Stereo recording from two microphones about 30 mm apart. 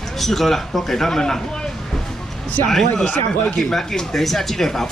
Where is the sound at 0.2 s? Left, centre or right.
Centre.